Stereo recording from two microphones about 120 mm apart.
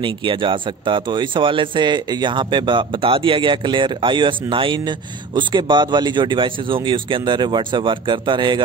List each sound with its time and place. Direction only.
0.0 s speech: 45° right (ahead or behind)